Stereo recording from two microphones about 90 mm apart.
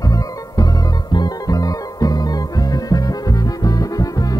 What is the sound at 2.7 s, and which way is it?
Music, 45° left (ahead or behind).